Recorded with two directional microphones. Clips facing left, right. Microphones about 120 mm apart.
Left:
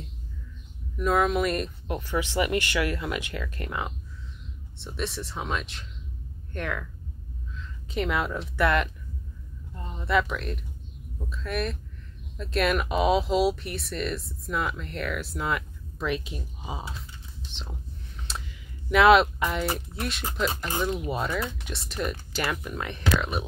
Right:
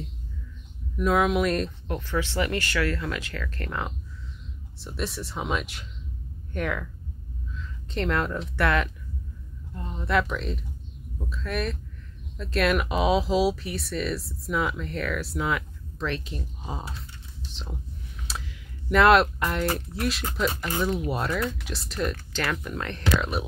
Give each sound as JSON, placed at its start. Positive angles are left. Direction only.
{"t": 0.9, "sound": "speech", "side_deg": 0}
{"t": 2.0, "sound": "speech", "side_deg": 15}
{"t": 16.0, "sound": "speech", "side_deg": 10}
{"t": 18.2, "sound": "a sound", "side_deg": 0}
{"t": 21.1, "sound": "speech", "side_deg": 0}